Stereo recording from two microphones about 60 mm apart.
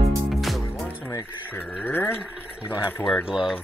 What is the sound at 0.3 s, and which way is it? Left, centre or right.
Music, centre.